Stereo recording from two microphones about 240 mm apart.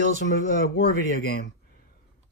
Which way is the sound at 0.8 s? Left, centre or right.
Left.